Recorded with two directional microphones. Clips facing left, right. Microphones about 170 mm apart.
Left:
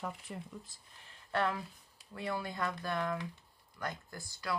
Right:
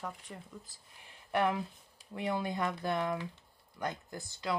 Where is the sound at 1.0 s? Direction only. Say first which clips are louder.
Right 3 dB; 15° right (ahead or behind).